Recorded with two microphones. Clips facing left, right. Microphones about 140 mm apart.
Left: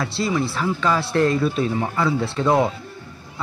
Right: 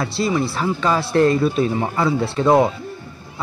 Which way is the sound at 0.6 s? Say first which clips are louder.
Right 2 dB; 20° right (ahead or behind).